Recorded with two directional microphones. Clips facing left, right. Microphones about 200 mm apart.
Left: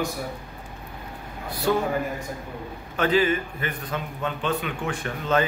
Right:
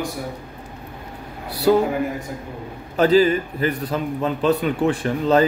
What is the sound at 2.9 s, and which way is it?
A man's voice, 35° right (ahead or behind).